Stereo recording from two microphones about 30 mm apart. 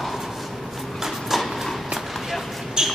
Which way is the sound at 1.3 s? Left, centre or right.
Centre.